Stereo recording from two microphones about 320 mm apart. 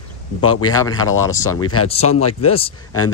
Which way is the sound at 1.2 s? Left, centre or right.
Centre.